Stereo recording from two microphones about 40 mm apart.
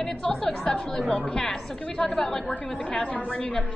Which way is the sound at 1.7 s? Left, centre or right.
Centre.